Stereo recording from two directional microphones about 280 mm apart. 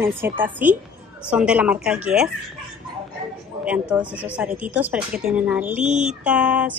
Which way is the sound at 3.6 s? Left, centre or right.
Centre.